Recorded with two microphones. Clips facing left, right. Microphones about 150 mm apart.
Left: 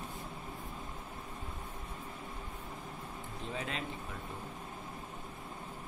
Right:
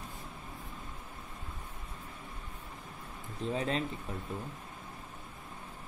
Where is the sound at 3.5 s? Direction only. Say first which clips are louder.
Right 7 dB; 35° right (ahead or behind).